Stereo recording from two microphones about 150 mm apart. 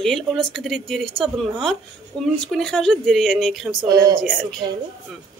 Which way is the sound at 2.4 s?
5° left (ahead or behind).